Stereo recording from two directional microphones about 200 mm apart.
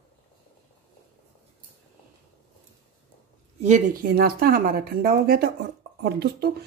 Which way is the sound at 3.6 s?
40° right (ahead or behind).